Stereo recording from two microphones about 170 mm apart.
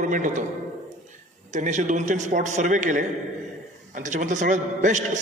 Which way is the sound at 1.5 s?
45° right (ahead or behind).